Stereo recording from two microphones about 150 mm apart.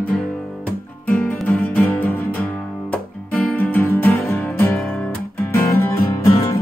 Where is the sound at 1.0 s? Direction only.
10° left (ahead or behind).